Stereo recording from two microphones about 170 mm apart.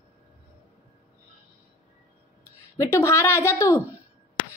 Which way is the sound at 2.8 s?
15° left (ahead or behind).